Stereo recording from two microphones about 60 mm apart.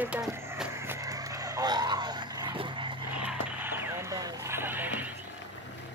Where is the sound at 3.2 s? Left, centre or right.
Right.